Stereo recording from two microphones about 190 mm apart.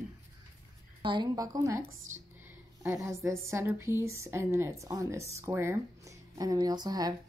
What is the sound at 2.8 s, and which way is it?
A woman's voice, 15° right (ahead or behind).